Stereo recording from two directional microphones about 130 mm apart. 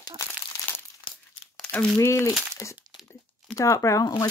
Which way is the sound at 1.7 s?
20° left (ahead or behind).